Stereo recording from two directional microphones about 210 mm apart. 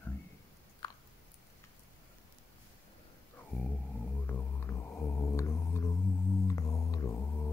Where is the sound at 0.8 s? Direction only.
20° left (ahead or behind).